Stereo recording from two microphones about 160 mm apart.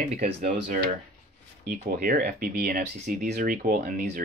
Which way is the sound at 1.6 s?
65° right (ahead or behind).